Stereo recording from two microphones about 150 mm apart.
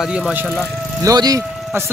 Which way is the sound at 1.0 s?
25° right (ahead or behind).